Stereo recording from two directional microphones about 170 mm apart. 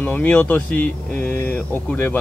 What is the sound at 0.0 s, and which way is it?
Speech, 10° left (ahead or behind).